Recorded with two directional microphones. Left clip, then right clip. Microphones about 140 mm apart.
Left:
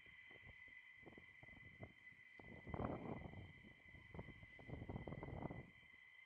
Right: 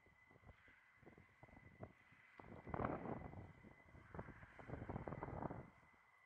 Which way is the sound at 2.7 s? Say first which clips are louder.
Right 3 dB; 40° left (ahead or behind).